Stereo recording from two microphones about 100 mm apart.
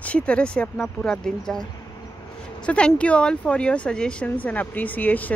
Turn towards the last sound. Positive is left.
turn(degrees=15)  # may be behind; listen again after turning